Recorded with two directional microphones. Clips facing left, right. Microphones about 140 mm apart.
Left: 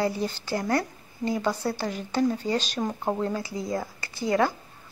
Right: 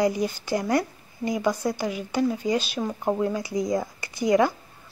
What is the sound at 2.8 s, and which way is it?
Speech, 10° left (ahead or behind).